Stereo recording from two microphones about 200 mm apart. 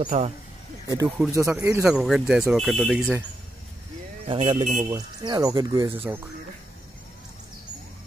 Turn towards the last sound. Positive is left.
turn(degrees=-10)  # may be behind; listen again after turning